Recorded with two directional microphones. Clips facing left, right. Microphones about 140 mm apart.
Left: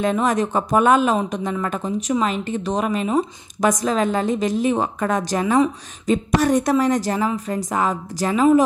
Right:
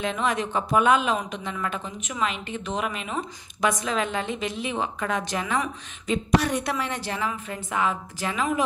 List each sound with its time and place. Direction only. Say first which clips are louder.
0.0 s speech: left 7 dB; 40° left (ahead or behind)